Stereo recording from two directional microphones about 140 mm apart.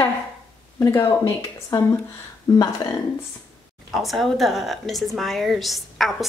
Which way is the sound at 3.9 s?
Centre (ahead or behind).